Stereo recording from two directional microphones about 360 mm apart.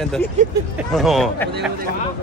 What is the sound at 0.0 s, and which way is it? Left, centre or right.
Speech, centre.